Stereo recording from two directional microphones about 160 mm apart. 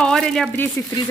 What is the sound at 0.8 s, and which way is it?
Speech, 15° left (ahead or behind).